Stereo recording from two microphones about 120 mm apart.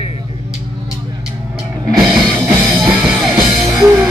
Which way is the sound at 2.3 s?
15° right (ahead or behind).